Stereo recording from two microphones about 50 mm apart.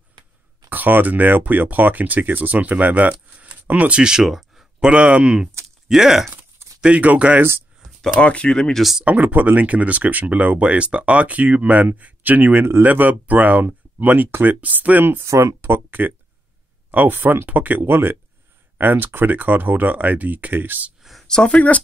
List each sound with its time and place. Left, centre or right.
0.7 s speech: right
4.0 s speech: centre
4.8 s speech: right
6.8 s speech: right
8.2 s speech: left
8.5 s speech: centre
9.0 s speech: right
15.2 s speech: right
21.0 s a sound: centre
21.3 s speech: centre
21.5 s speech: left